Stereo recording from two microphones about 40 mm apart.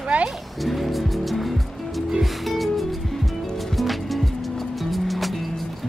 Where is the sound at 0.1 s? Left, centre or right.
Right.